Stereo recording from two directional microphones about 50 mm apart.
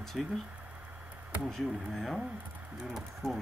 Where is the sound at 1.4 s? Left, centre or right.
Centre.